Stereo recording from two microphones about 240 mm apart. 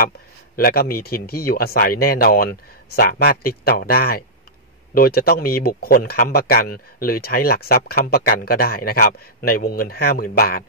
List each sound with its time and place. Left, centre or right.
0.6 s speech: left